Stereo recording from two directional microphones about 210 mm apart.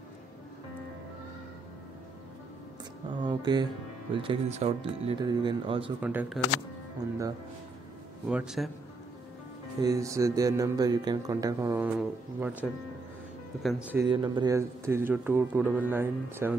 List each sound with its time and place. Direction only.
3.3 s speech: 20° right (ahead or behind)
5.9 s speech: 5° right (ahead or behind)
7.0 s speech: 15° right (ahead or behind)
8.3 s speech: 5° right (ahead or behind)
9.8 s speech: 15° right (ahead or behind)
14.0 s speech: 20° right (ahead or behind)